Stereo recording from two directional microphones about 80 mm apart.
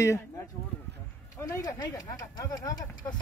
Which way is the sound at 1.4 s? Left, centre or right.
Left.